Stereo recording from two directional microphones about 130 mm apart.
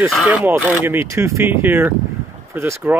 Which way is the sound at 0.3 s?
10° right (ahead or behind).